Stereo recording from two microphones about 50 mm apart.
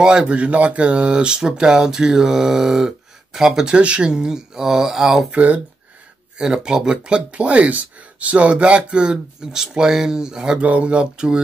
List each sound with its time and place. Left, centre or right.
0.0 s speech: centre
3.7 s speech: right
5.3 s speech: right
6.3 s speech: centre
10.6 s speech: right